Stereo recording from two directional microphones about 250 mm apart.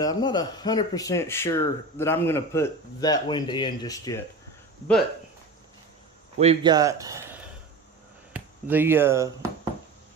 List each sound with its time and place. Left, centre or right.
0.0 s speech: centre
6.3 s speech: right